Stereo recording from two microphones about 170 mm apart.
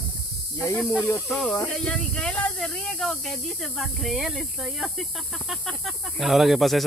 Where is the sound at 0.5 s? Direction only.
15° left (ahead or behind).